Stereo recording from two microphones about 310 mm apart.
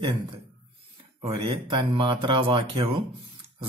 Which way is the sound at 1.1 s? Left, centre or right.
Centre.